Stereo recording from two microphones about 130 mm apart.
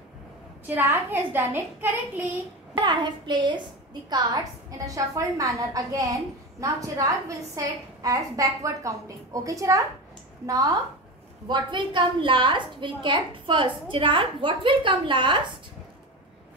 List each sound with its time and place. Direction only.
0.7 s a woman's voice: 15° right (ahead or behind)
2.7 s a woman's voice: 35° right (ahead or behind)